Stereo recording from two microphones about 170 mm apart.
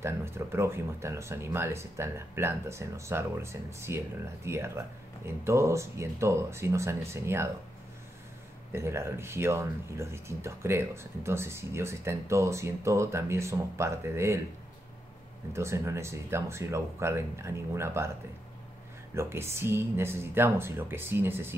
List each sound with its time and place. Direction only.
0.0 s speech: 15° right (ahead or behind)
8.7 s speech: 15° right (ahead or behind)
15.5 s speech: 15° right (ahead or behind)
19.1 s speech: 15° right (ahead or behind)